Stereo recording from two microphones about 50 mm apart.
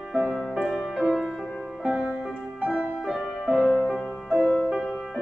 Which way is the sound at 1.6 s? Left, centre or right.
Centre.